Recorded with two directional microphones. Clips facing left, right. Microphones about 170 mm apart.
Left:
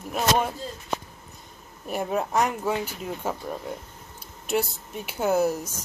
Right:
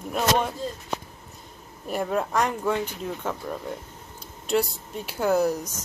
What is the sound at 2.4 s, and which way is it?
Speech, 5° left (ahead or behind).